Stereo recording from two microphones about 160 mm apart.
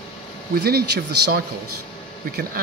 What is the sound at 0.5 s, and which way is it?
Speech, 80° right.